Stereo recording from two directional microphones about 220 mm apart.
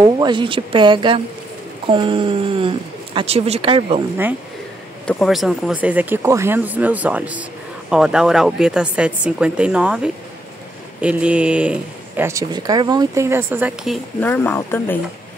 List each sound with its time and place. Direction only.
0.0 s speech: 20° right (ahead or behind)
5.0 s speech: centre (ahead or behind)
14.2 s speech: 5° left (ahead or behind)